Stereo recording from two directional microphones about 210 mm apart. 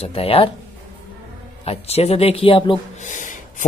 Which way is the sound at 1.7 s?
30° left (ahead or behind).